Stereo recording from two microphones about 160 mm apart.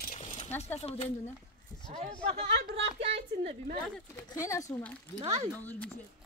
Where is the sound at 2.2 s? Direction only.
40° right (ahead or behind).